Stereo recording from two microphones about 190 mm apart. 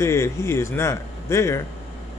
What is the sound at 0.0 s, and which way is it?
A man's voice, 15° left (ahead or behind).